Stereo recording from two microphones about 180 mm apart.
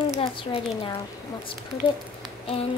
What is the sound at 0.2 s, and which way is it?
Speech, 25° left (ahead or behind).